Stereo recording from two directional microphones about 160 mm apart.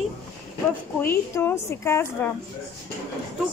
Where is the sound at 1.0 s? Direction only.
15° left (ahead or behind).